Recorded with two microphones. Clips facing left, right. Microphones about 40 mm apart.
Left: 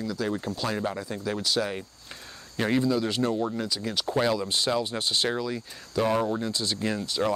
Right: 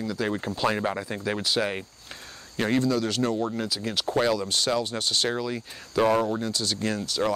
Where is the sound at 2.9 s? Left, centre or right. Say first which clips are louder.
Right 1 dB; left.